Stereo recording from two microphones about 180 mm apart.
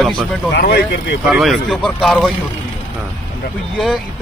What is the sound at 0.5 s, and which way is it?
Speech, 60° left (ahead or behind).